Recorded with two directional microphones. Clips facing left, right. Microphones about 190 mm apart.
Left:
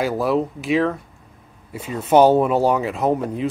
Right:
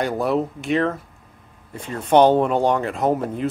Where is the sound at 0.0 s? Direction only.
Centre (ahead or behind).